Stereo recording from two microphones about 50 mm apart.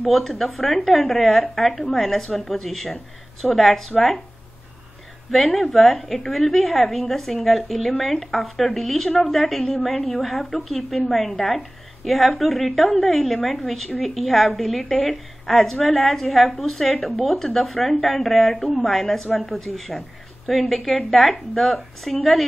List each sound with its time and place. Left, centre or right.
0.0 s a woman's voice: centre
1.7 s a woman's voice: centre
2.0 s a woman's voice: centre
5.3 s a woman's voice: centre